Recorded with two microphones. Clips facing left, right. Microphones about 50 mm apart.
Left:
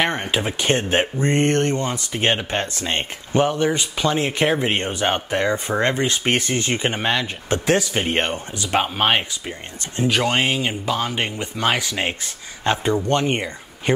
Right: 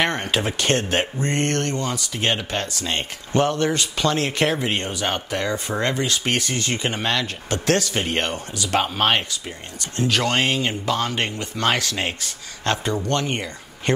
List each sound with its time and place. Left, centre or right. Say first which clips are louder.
0.0 s speech: left 1 dB; centre
3.3 s speech: left 1 dB; centre